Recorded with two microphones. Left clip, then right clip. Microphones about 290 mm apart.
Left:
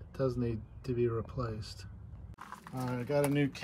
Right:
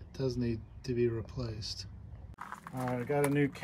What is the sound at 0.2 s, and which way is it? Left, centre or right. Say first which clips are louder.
Speech: left 1 dB; centre.